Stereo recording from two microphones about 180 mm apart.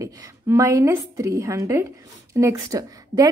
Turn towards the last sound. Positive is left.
turn(degrees=-20)  # may be behind; listen again after turning